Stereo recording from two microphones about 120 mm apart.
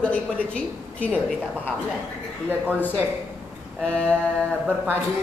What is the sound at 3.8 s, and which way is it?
Speech, 5° left (ahead or behind).